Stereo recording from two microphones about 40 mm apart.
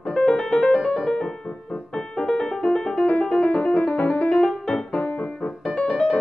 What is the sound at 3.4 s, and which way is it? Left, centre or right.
Music, left.